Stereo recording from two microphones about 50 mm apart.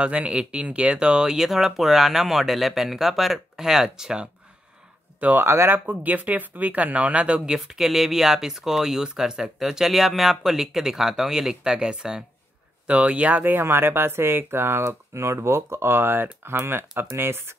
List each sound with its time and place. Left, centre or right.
0.0 s speech: right
5.4 s speech: right
5.9 s speech: right; by 12.2 s centre
12.8 s speech: right
13.4 s speech: right
13.7 s speech: right
14.9 s speech: right